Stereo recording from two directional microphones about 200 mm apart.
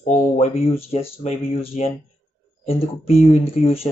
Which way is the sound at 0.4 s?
30° left (ahead or behind).